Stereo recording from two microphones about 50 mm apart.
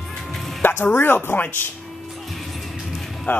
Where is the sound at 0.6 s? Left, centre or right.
Left.